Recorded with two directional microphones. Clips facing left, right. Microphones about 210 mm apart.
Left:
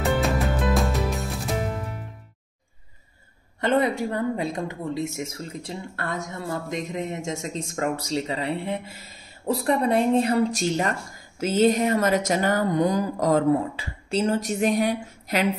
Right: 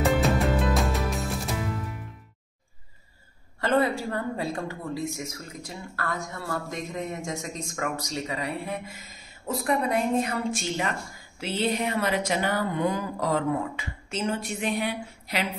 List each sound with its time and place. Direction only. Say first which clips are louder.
0.0 s music: even; centre (ahead or behind)
3.6 s speech: left 2 dB; 20° left (ahead or behind); by 15.4 s 45° left (ahead or behind)